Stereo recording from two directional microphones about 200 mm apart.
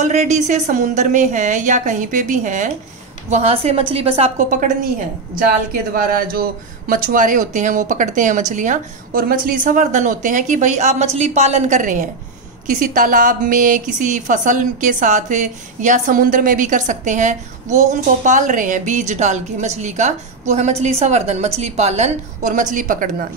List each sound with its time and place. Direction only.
0.0 s a woman's voice: 35° right (ahead or behind)
4.4 s a woman's voice: 40° right (ahead or behind)
5.9 s a woman's voice: 45° right (ahead or behind)